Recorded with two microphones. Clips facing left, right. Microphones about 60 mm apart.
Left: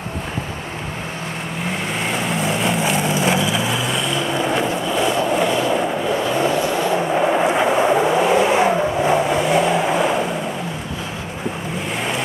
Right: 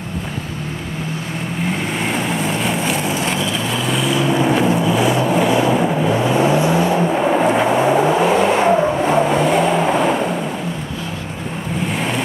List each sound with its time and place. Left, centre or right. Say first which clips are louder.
2.0 s vehicle: right 2 dB; centre
6.2 s vehicle: right 5 dB; right
6.9 s vehicle: right 2 dB; centre